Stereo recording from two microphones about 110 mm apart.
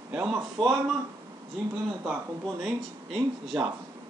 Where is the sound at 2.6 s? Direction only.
5° right (ahead or behind).